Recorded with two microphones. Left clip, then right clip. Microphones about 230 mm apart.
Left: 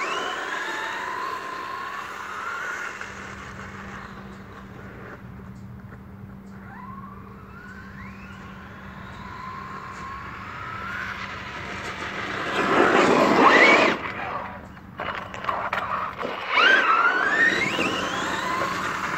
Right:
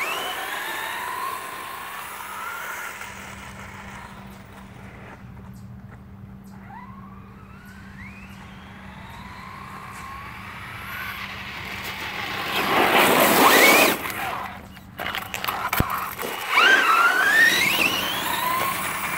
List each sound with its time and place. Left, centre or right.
0.0 s vehicle: centre
9.4 s vehicle: centre
13.2 s a sound: right
17.5 s vehicle: centre